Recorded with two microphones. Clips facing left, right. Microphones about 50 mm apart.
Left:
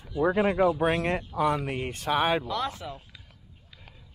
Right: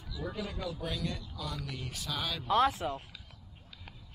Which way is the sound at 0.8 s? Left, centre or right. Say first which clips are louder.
Left 12 dB; left.